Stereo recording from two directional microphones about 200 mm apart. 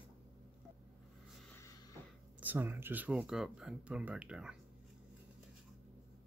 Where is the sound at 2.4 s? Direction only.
10° right (ahead or behind).